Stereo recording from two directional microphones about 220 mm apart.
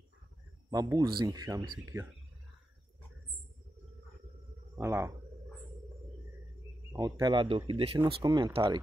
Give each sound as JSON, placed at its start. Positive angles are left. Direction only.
{"t": 0.7, "sound": "speech", "side_deg": -15}
{"t": 4.7, "sound": "speech", "side_deg": -10}
{"t": 6.9, "sound": "speech", "side_deg": -15}